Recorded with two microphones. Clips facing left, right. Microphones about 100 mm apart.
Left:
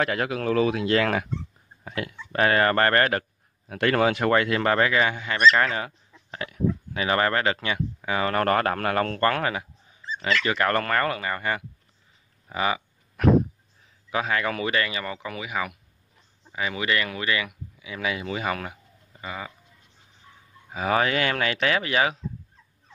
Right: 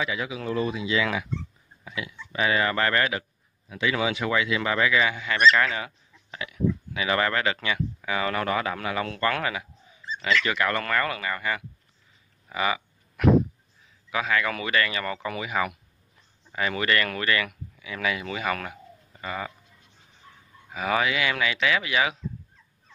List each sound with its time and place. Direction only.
0.0 s speech: 60° left (ahead or behind); by 11.6 s 35° left (ahead or behind)
12.4 s a sound: 30° left (ahead or behind)
14.1 s speech: 30° left (ahead or behind); by 15.2 s 15° left (ahead or behind)
15.2 s speech: 5° left (ahead or behind)
20.7 s speech: 35° left (ahead or behind)